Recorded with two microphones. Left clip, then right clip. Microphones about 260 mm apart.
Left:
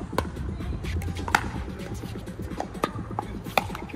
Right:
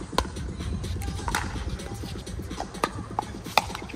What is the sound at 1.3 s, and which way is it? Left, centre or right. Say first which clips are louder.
Music: left 5 dB; centre.